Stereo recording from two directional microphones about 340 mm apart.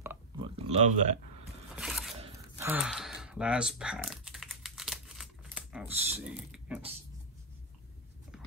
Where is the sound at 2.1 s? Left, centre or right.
Centre.